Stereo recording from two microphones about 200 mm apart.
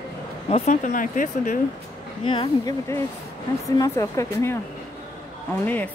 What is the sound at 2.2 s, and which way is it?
Speech, 25° left (ahead or behind).